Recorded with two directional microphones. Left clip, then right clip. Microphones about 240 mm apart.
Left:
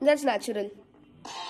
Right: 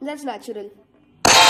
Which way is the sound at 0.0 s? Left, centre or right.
Left.